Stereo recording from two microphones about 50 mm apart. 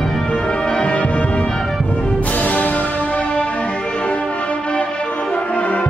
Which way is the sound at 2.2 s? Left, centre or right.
Left.